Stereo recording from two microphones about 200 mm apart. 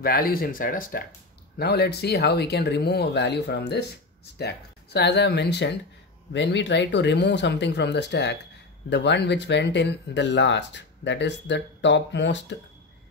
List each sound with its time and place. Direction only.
0.0 s speech: 50° left (ahead or behind)